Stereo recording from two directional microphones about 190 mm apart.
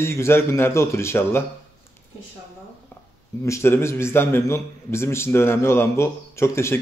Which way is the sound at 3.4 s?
15° left (ahead or behind).